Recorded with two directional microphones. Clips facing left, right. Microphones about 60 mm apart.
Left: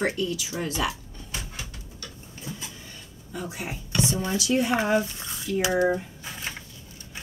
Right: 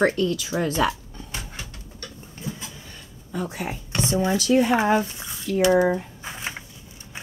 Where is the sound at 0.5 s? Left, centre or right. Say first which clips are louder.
Right 6 dB; right.